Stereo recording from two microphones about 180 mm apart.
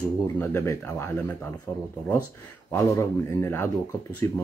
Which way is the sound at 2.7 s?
15° left (ahead or behind).